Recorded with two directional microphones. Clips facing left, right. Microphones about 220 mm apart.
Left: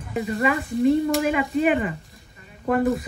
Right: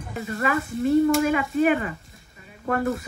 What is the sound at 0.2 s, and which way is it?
Speech, centre (ahead or behind).